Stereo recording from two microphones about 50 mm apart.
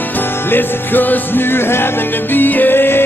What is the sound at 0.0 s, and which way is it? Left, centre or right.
Music, left.